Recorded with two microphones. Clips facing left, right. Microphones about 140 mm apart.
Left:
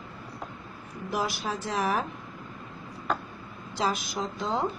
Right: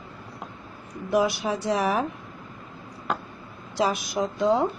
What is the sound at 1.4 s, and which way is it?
Speech, 15° right (ahead or behind).